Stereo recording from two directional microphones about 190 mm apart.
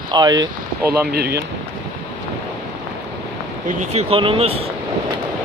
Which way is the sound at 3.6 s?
35° right (ahead or behind).